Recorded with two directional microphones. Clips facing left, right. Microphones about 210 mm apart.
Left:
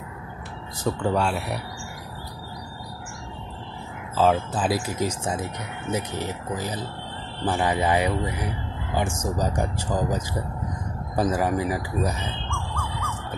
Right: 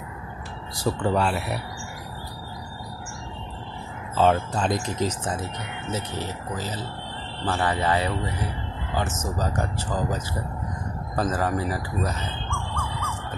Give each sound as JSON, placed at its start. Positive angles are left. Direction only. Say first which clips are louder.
{"t": 0.7, "sound": "speech", "louder": "even", "side_deg": -5}
{"t": 4.2, "sound": "speech", "louder": "even", "side_deg": 5}